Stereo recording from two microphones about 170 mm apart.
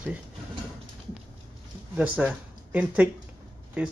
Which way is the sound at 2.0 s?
10° right (ahead or behind).